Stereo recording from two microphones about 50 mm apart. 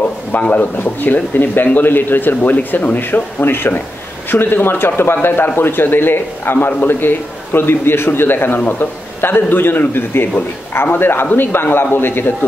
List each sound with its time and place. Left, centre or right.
0.3 s a man's voice: left